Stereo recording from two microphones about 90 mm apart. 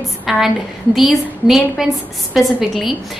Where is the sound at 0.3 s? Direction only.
Centre (ahead or behind).